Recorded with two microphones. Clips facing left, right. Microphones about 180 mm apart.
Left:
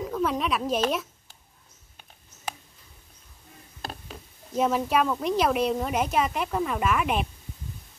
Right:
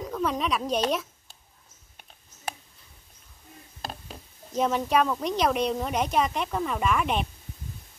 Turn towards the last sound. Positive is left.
turn(degrees=5)  # may be behind; listen again after turning